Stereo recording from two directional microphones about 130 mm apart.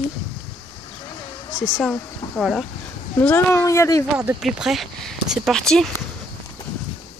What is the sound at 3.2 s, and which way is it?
Speech, 15° left (ahead or behind).